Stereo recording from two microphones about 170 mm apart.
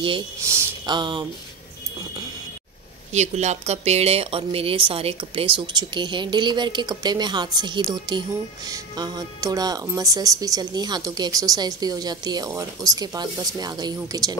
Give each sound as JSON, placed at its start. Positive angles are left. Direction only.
{"t": 0.4, "sound": "a sound", "side_deg": -15}
{"t": 0.9, "sound": "speech", "side_deg": -25}
{"t": 3.1, "sound": "speech", "side_deg": -40}